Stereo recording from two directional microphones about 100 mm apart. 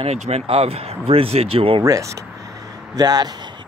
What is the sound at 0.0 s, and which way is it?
Speech, 85° right.